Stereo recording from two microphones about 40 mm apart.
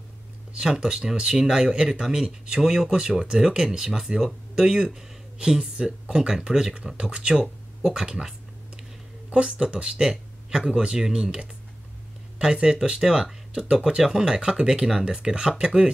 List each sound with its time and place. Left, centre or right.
0.6 s speech: centre
13.0 s speech: centre